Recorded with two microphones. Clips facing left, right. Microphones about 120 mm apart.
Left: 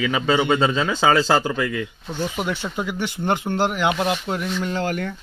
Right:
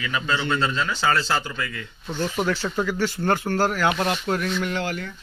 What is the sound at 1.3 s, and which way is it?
Speech, 90° left.